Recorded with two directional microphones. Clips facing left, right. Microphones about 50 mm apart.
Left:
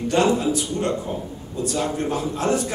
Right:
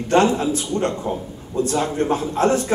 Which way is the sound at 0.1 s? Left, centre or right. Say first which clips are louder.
Right 3 dB; right.